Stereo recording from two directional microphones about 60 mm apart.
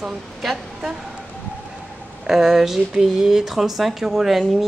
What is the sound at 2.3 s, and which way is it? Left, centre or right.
Speech, centre.